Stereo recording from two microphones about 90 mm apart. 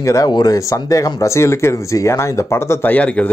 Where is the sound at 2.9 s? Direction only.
15° left (ahead or behind).